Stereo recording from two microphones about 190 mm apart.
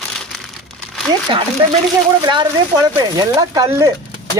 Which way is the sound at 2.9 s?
20° right (ahead or behind).